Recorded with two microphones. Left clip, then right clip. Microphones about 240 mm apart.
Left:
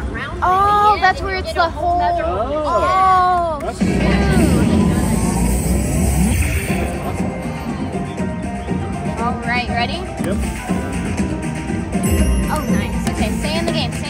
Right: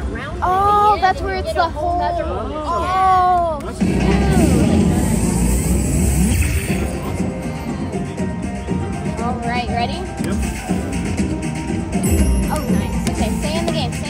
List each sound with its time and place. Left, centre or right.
0.5 s a sound: left
2.7 s cat: left
3.8 s music: centre
9.5 s music: left
11.9 s music: centre
12.7 s music: left